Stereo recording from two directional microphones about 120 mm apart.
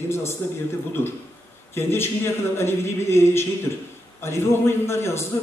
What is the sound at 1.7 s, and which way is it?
A man's voice, 20° left (ahead or behind).